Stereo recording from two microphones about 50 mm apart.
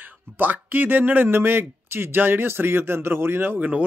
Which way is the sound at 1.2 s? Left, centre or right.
Right.